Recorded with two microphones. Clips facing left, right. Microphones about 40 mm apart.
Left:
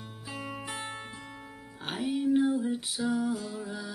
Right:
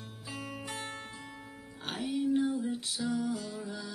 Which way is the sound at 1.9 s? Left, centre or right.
Centre.